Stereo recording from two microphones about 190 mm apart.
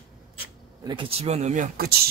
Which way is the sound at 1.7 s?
55° right (ahead or behind).